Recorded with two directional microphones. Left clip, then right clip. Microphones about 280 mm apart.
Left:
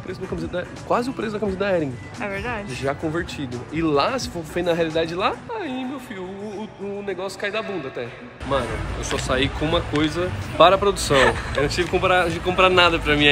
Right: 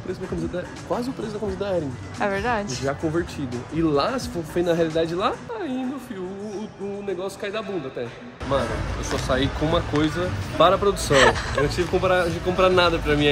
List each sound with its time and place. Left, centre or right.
1.3 s speech: left
2.1 s speech: centre
7.1 s speech: centre
10.0 s speech: centre
10.7 s speech: centre